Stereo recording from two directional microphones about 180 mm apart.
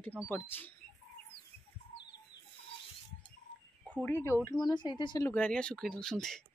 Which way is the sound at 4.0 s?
15° left (ahead or behind).